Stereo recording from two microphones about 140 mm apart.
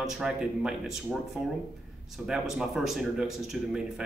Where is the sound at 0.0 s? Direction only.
5° right (ahead or behind).